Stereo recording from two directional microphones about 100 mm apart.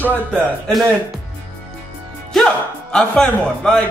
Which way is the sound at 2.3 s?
5° left (ahead or behind).